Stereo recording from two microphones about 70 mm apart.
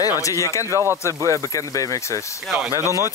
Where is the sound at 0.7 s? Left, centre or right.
Right.